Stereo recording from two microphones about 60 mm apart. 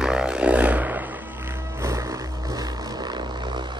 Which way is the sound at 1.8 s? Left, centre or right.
Right.